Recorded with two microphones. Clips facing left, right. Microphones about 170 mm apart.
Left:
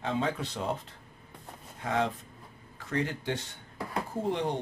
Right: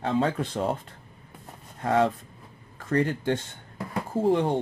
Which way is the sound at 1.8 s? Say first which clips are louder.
Right 7 dB; 50° right (ahead or behind).